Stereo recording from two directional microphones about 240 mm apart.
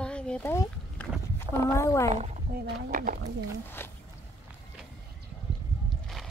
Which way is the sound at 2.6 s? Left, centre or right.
Right.